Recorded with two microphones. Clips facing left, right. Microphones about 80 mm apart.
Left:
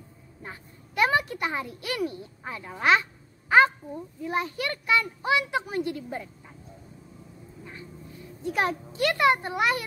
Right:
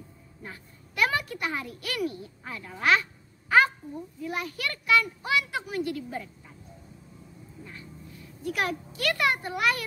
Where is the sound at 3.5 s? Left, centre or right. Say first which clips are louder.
Left 2 dB; left.